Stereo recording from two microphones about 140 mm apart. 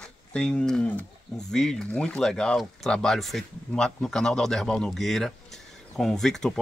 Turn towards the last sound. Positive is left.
turn(degrees=5)  # may be behind; listen again after turning